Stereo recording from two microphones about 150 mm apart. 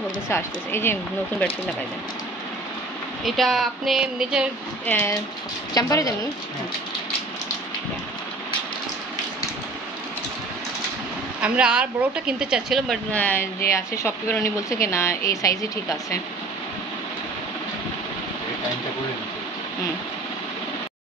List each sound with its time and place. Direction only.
0.3 s speech: 15° left (ahead or behind)
3.3 s speech: centre (ahead or behind)
4.8 s speech: 10° left (ahead or behind)
5.8 s a woman's voice: 25° left (ahead or behind)
11.4 s speech: 5° right (ahead or behind)
13.1 s a woman's voice: 10° left (ahead or behind)